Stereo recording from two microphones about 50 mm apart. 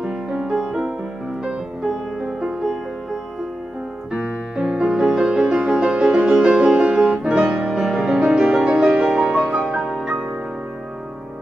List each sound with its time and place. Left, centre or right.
0.0 s music: centre
1.9 s music: centre
4.1 s music: centre